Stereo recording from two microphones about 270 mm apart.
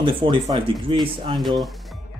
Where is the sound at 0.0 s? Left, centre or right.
Centre.